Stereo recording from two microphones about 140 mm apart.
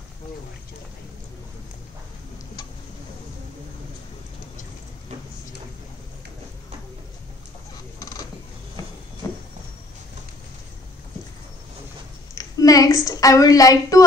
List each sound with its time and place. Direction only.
12.4 s a woman's voice: 25° left (ahead or behind)